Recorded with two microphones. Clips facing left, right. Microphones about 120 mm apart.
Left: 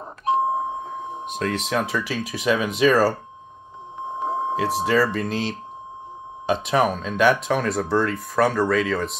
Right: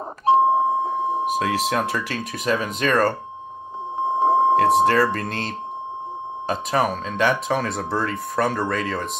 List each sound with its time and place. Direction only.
0.2 s beep: 30° right (ahead or behind)
1.2 s speech: 5° right (ahead or behind)
4.0 s beep: 30° right (ahead or behind)
4.6 s speech: centre (ahead or behind)